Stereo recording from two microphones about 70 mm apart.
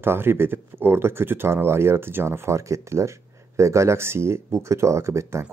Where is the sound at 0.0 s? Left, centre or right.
Right.